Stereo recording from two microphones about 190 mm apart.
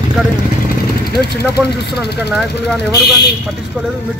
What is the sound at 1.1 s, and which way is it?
Speech, 55° left (ahead or behind).